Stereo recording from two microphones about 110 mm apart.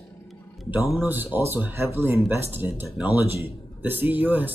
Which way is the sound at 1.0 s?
20° right (ahead or behind).